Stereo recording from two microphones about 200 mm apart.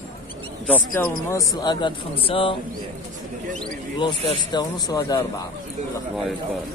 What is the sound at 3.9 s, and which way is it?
Speech, 25° left (ahead or behind).